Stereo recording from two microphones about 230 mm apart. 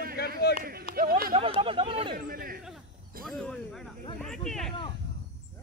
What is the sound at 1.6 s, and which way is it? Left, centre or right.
Speech, right.